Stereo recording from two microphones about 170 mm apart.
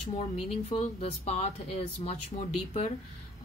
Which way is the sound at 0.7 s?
35° left (ahead or behind).